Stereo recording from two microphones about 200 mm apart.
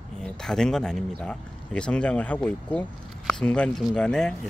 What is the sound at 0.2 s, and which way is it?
Speech, 5° left (ahead or behind).